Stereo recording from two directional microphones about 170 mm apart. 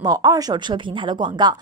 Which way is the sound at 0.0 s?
20° right (ahead or behind).